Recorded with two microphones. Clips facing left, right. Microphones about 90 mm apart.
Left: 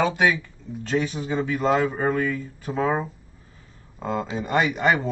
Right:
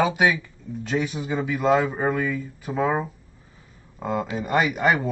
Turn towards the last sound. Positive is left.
turn(degrees=-5)  # may be behind; listen again after turning